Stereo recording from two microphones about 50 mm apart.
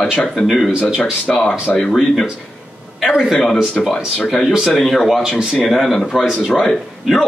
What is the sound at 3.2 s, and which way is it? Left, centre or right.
Speech, centre.